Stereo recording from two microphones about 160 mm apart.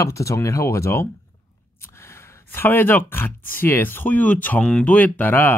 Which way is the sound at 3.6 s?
15° left (ahead or behind).